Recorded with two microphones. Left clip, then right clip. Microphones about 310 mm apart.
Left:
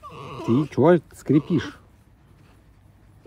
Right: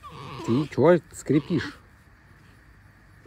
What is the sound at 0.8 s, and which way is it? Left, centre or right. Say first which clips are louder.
Speech: left 1 dB; left.